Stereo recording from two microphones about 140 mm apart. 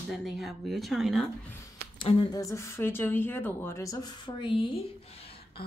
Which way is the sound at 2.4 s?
20° left (ahead or behind).